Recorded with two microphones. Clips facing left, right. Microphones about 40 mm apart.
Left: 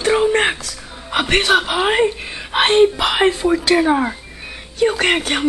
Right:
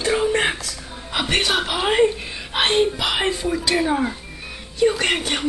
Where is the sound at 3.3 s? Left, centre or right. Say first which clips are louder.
Left 6 dB; left.